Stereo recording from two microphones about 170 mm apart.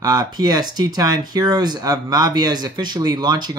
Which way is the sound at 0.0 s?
25° right (ahead or behind).